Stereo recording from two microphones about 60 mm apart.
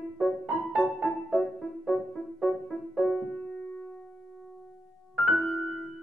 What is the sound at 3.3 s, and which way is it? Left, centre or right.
Music, left.